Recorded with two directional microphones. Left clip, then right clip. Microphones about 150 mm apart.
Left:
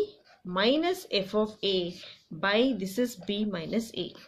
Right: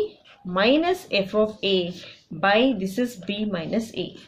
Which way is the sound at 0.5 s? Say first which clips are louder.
Right 6 dB; 35° left (ahead or behind).